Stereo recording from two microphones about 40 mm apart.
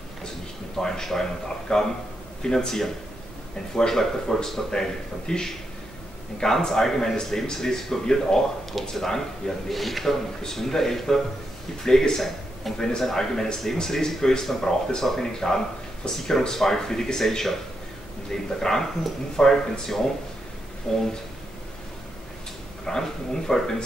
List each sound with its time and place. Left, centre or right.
0.7 s a man's voice: centre
22.8 s speech: centre